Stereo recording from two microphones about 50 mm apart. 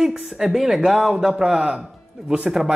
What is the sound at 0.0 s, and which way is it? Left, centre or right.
Speech, centre.